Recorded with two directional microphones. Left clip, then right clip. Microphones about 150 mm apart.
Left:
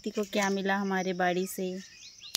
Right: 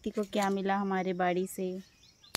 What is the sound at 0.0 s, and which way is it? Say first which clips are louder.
Speech: left 1 dB; 15° left (ahead or behind).